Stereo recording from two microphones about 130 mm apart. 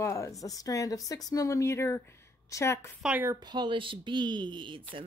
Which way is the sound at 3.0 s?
10° right (ahead or behind).